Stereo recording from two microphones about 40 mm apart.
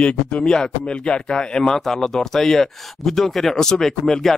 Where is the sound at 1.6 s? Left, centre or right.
Centre.